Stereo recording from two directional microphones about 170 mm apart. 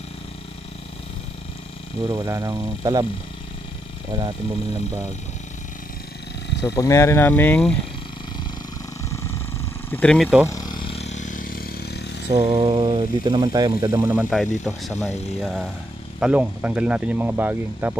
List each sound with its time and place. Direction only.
2.2 s speech: 20° right (ahead or behind)
4.1 s speech: 25° right (ahead or behind)
6.6 s speech: 20° left (ahead or behind)
9.8 s speech: 5° left (ahead or behind)
10.5 s a sound: 25° left (ahead or behind); by 12.1 s 70° left (ahead or behind)
12.3 s speech: 35° right (ahead or behind); by 14.2 s 15° right (ahead or behind)
14.3 s speech: centre (ahead or behind)